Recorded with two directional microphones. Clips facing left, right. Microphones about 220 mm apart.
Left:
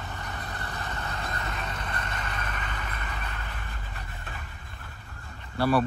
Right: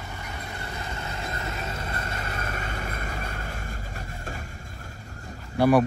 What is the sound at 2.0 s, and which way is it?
Vehicle, 40° right (ahead or behind).